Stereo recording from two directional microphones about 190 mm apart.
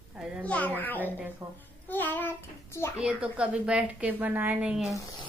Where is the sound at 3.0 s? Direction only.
5° right (ahead or behind).